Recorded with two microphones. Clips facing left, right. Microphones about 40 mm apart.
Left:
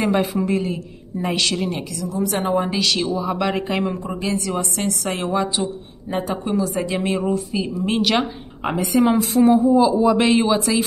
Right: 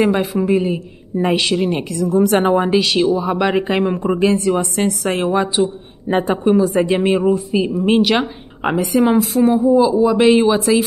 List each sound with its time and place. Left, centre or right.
0.1 s a woman's voice: centre
0.6 s speech: centre
1.8 s a woman's voice: right
2.8 s speech: centre
3.8 s a woman's voice: right
5.2 s speech: centre
6.0 s speech: right
8.6 s a woman's voice: centre